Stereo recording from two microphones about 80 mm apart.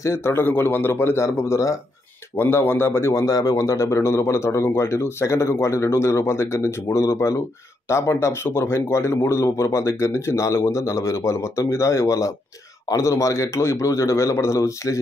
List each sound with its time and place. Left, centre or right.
0.0 s a man's voice: left
2.3 s a man's voice: left